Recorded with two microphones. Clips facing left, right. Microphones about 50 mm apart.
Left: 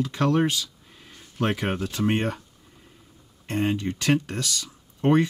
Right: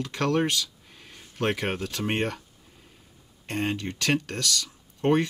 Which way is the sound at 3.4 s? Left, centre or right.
Centre.